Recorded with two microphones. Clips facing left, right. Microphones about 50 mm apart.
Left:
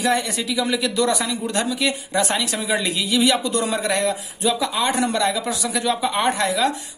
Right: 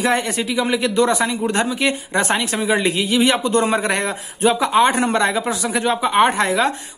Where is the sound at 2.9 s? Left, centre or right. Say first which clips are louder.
Even; right.